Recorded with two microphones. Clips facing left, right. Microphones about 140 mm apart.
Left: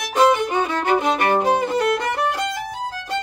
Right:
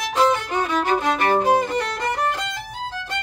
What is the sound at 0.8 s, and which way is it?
Music, 20° left (ahead or behind).